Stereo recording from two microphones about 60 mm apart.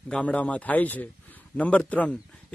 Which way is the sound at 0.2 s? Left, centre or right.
Left.